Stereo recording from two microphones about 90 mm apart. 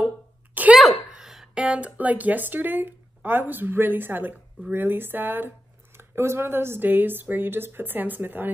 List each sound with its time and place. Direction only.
0.7 s speech: 5° right (ahead or behind); by 8.5 s 20° right (ahead or behind)